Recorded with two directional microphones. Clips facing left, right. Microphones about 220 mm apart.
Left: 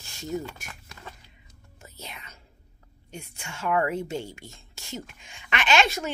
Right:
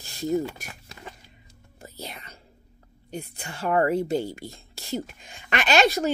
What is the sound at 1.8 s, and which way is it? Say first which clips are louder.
Whispering: right 5 dB; 35° right (ahead or behind).